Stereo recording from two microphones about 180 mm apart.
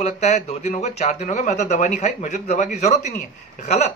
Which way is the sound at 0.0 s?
40° left (ahead or behind).